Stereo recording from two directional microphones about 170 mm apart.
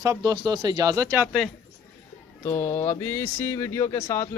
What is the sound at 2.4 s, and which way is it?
Speech, 15° left (ahead or behind).